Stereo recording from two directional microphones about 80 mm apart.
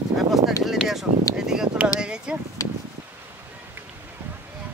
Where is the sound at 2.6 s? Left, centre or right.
Left.